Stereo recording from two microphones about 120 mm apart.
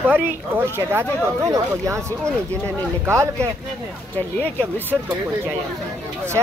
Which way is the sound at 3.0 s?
25° right (ahead or behind).